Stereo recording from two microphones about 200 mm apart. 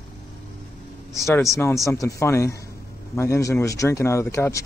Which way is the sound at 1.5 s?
15° left (ahead or behind).